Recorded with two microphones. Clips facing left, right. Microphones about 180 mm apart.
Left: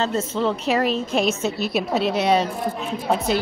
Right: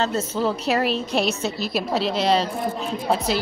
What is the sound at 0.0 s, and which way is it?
A woman's voice, centre (ahead or behind).